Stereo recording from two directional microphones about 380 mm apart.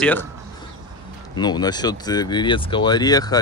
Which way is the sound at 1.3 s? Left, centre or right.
Centre.